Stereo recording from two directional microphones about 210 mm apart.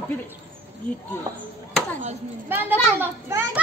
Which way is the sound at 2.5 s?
10° right (ahead or behind).